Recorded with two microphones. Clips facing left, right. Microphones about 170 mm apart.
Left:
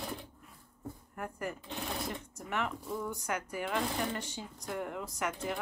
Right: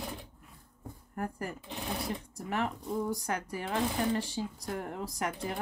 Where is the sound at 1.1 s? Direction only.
35° right (ahead or behind).